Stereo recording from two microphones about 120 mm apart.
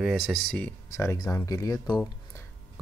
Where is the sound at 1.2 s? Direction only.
30° left (ahead or behind).